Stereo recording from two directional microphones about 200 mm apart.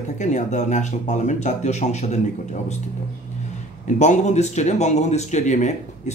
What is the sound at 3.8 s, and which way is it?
Speech, 35° left (ahead or behind).